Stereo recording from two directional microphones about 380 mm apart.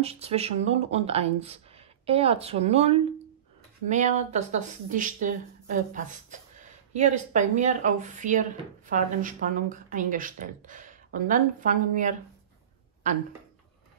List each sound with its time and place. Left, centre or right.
0.0 s speech: centre